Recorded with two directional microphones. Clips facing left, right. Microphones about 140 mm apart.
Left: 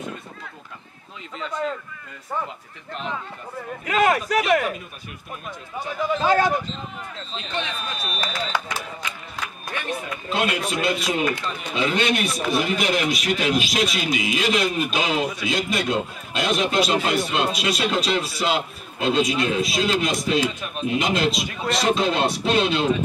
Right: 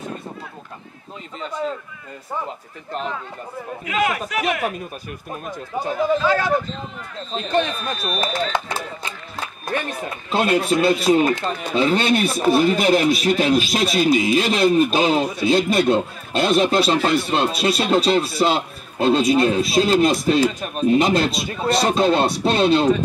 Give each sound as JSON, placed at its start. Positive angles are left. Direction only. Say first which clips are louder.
{"t": 1.5, "sound": "speech", "louder": "right 1 dB", "side_deg": -5}
{"t": 3.8, "sound": "speech", "louder": "left 3 dB", "side_deg": 40}
{"t": 5.3, "sound": "a man's voice", "louder": "right 6 dB", "side_deg": -35}
{"t": 7.3, "sound": "speech", "louder": "right 9 dB", "side_deg": -40}
{"t": 8.5, "sound": "a man's voice", "louder": "right 3 dB", "side_deg": -30}